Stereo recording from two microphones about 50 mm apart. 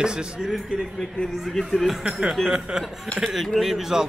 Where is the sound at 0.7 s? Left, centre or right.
Centre.